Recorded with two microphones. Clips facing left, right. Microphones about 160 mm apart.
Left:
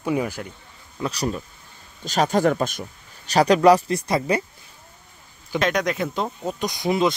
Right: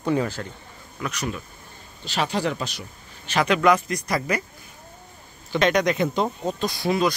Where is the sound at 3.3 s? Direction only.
35° left (ahead or behind).